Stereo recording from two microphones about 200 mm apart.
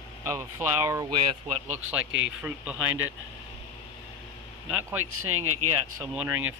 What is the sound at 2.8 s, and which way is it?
Speech, 90° right.